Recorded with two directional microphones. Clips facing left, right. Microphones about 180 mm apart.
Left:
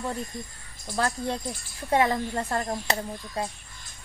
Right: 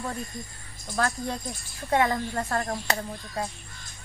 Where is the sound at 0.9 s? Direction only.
30° left (ahead or behind).